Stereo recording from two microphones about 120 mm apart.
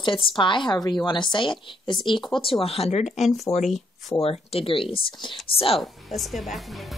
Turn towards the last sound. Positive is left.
turn(degrees=0)  # may be behind; listen again after turning